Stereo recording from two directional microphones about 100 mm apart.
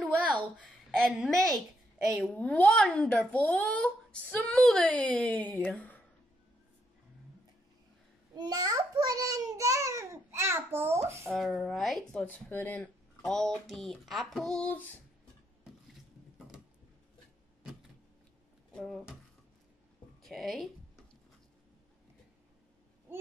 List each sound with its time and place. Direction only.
1.1 s speech: centre (ahead or behind)
2.3 s a child's voice: 15° left (ahead or behind)
4.5 s a child's voice: 5° left (ahead or behind)
8.4 s a child's voice: 40° right (ahead or behind); by 11.0 s 25° right (ahead or behind)
11.2 s speech: 5° left (ahead or behind)
12.4 s a child's voice: 20° left (ahead or behind)
13.2 s a sound: 5° left (ahead or behind)
13.7 s speech: centre (ahead or behind)
14.7 s speech: 20° left (ahead or behind)
18.7 s speech: 5° left (ahead or behind)
20.2 s music: centre (ahead or behind)